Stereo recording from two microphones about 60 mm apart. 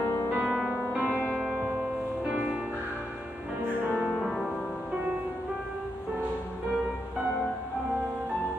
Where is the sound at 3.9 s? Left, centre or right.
Centre.